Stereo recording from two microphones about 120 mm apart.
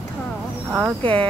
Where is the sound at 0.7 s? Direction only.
15° right (ahead or behind).